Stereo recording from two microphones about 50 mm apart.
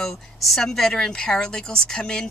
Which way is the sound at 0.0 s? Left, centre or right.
Centre.